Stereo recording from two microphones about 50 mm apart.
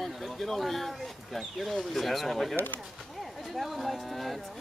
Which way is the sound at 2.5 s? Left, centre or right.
Left.